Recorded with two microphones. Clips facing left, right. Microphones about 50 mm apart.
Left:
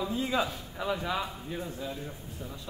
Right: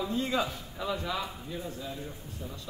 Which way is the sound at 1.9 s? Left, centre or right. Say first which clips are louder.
Left 1 dB; centre.